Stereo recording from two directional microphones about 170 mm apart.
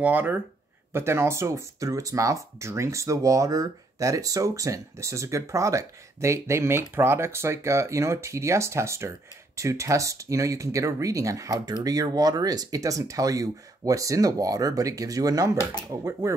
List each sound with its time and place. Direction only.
0.0 s speech: 10° right (ahead or behind)